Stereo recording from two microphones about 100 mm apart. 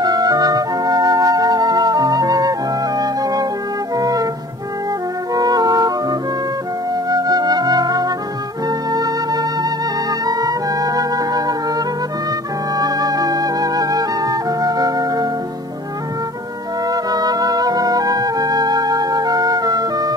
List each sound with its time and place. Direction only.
0.0 s music: 40° right (ahead or behind)
5.3 s music: 40° right (ahead or behind)
16.8 s music: 40° right (ahead or behind)